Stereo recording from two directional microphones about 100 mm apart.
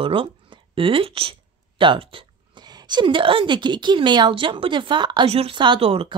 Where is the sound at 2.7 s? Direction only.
45° right (ahead or behind).